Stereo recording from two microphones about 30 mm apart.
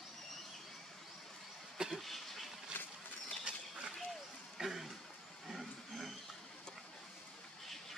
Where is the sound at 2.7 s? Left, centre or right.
Left.